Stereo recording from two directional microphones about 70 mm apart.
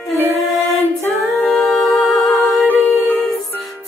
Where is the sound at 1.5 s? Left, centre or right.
Centre.